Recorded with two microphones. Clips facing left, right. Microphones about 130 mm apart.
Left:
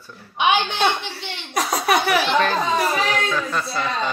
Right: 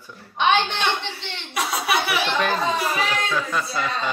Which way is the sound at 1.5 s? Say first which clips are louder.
Left 3 dB; 40° left (ahead or behind).